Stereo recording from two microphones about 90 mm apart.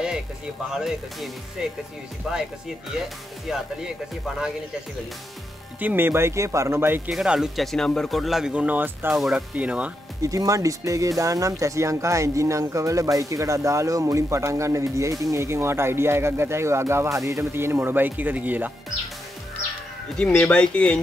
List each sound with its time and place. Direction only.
0.7 s speech: 5° right (ahead or behind)
5.8 s speech: 20° right (ahead or behind)
7.1 s speech: 5° right (ahead or behind); by 9.1 s 20° right (ahead or behind)
9.1 s speech: 5° right (ahead or behind)
10.2 s speech: 40° right (ahead or behind); by 18.7 s 20° right (ahead or behind)
20.3 s speech: 10° left (ahead or behind)